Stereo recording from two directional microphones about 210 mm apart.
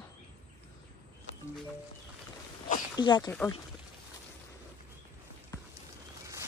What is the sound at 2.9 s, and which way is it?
Speech, 20° left (ahead or behind).